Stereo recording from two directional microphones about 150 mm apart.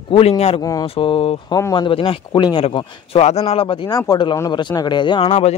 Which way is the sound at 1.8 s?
35° left (ahead or behind).